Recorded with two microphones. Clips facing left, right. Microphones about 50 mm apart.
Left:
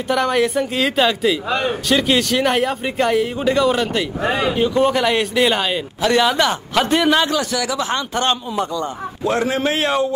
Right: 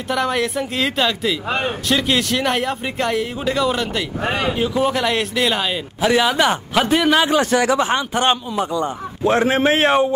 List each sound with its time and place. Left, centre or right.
0.1 s speech: centre
4.2 s speech: right
4.6 s speech: centre
5.9 s speech: centre
7.5 s speech: right
8.1 s speech: centre